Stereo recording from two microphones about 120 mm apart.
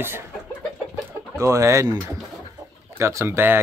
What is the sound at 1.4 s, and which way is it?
Speech, 25° right (ahead or behind).